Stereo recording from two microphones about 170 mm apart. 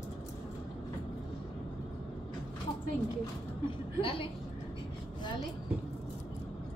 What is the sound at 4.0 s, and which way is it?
Speech, 30° left (ahead or behind).